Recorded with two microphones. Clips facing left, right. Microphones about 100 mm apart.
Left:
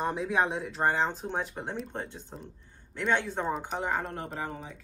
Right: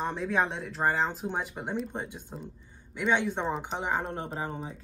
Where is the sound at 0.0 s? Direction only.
Centre (ahead or behind); by 2.3 s 15° right (ahead or behind).